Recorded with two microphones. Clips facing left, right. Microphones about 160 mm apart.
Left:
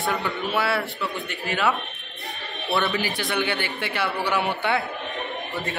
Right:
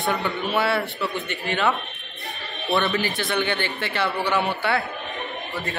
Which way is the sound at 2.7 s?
5° left (ahead or behind).